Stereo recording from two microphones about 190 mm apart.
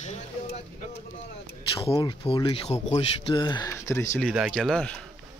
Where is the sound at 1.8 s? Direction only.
25° left (ahead or behind); by 4.3 s 10° left (ahead or behind).